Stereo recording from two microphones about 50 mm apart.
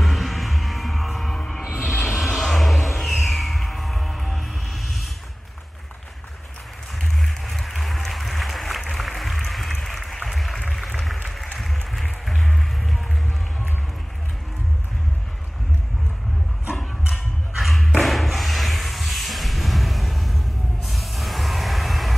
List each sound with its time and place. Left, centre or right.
0.0 s music: centre
1.6 s music: centre
1.9 s a sound: left
2.1 s music: centre
7.0 s applause: centre
11.9 s music: centre
17.1 s music: centre
18.0 s a sound: centre